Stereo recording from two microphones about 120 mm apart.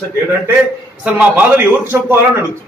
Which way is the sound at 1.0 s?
10° right (ahead or behind).